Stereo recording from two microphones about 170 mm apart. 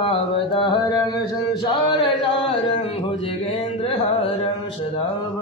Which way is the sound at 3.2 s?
35° left (ahead or behind).